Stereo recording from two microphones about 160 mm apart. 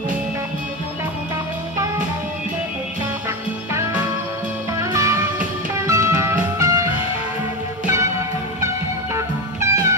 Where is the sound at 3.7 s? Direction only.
15° right (ahead or behind).